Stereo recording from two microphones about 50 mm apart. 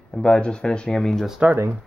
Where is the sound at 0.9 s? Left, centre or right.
Centre.